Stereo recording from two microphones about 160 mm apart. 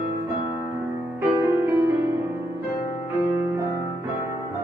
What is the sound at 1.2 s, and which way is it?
Music, 15° right (ahead or behind).